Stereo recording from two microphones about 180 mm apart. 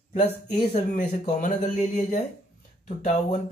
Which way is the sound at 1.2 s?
40° left (ahead or behind).